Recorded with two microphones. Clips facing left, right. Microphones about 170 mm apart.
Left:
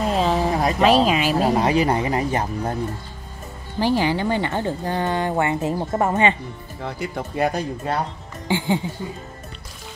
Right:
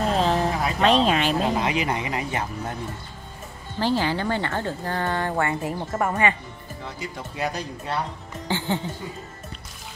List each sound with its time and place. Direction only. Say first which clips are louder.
0.1 s a sound: left 2 dB; centre (ahead or behind)
0.7 s speech: left 2 dB; 5° left (ahead or behind)
1.4 s speech: left 5 dB; 40° left (ahead or behind)
3.8 s speech: left 3 dB; 15° left (ahead or behind)
6.8 s speech: left 7 dB; 60° left (ahead or behind)
8.5 s speech: left 4 dB; 15° left (ahead or behind)